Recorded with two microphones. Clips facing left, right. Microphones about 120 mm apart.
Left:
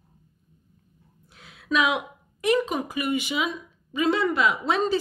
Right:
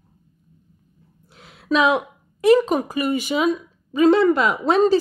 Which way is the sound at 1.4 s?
35° right (ahead or behind).